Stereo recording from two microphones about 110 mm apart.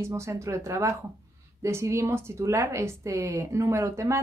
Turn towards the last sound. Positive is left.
turn(degrees=-25)  # may be behind; listen again after turning